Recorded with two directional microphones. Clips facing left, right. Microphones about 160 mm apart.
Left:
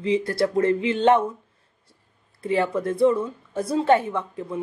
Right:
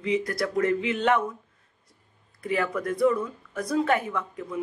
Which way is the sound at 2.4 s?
30° left (ahead or behind).